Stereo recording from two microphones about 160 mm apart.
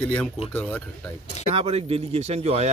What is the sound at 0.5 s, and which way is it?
Speech, 10° left (ahead or behind).